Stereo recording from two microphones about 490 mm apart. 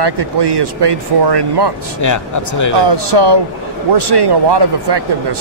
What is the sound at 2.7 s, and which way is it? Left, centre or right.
Speech, right.